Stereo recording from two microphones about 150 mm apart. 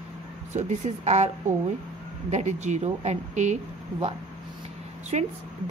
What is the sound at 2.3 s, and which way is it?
A woman's voice, 50° right (ahead or behind).